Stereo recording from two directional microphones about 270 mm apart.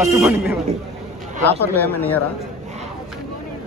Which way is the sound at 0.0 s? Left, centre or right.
Centre.